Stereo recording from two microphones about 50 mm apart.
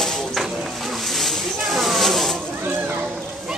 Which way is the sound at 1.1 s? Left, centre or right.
Centre.